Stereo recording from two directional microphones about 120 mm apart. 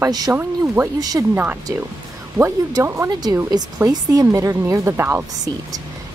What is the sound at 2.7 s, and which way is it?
A woman's voice, 25° right (ahead or behind).